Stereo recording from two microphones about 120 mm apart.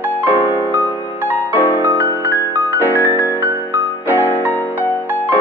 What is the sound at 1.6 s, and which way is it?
Music, 15° left (ahead or behind).